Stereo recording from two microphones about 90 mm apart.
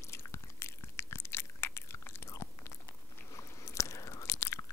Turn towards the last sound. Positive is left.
turn(degrees=35)  # may be behind; listen again after turning